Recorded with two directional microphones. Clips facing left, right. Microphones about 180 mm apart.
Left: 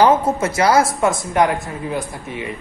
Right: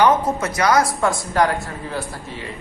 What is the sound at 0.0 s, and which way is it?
A man's voice, 25° left (ahead or behind).